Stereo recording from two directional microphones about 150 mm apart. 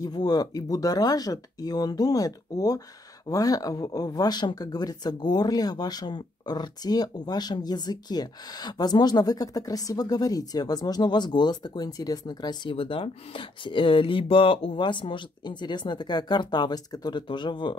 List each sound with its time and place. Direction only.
0.0 s speech: 25° left (ahead or behind)